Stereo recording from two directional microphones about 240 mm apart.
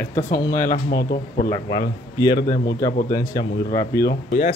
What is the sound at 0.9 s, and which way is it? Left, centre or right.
Speech, left.